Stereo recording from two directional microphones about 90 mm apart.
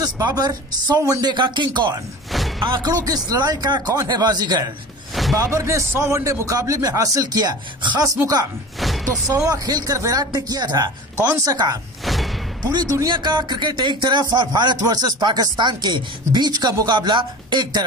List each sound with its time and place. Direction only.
0.0 s speech: 45° right (ahead or behind)
1.2 s speech: 60° right (ahead or behind)
2.9 s speech: 45° right (ahead or behind)
5.4 s speech: 35° right (ahead or behind); by 8.0 s 55° right (ahead or behind)
8.7 s music: centre (ahead or behind)
9.5 s speech: 45° right (ahead or behind)
12.0 s music: centre (ahead or behind)
12.6 s speech: 40° right (ahead or behind)
13.1 s speech: 60° right (ahead or behind)